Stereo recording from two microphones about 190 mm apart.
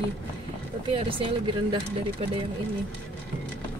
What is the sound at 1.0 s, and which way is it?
Speech, 25° right (ahead or behind).